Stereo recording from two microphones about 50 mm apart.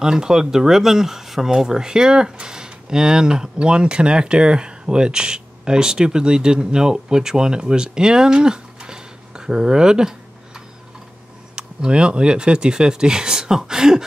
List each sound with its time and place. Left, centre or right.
0.0 s speech: centre
11.5 s speech: centre